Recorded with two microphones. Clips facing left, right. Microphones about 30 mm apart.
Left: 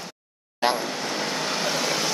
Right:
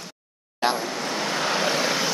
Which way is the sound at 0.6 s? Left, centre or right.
Centre.